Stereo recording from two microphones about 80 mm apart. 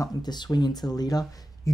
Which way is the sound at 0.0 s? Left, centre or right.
Left.